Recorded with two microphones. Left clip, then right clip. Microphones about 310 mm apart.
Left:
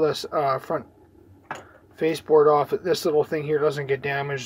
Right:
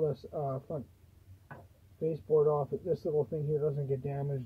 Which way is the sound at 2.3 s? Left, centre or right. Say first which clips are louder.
Left 11 dB; left.